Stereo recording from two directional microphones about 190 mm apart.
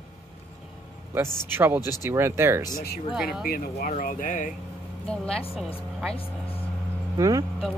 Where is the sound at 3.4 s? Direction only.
50° left (ahead or behind).